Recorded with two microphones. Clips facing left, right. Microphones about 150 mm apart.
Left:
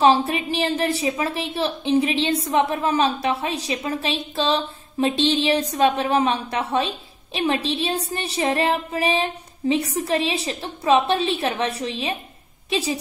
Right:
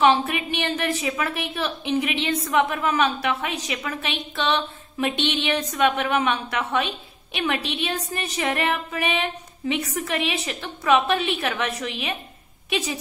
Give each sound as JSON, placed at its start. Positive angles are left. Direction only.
{"t": 0.0, "sound": "a woman's voice", "side_deg": 35}